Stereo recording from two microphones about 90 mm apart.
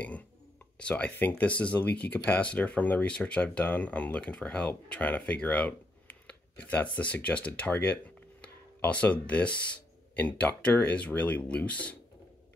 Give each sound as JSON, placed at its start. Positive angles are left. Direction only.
{"t": 0.7, "sound": "speech", "side_deg": 10}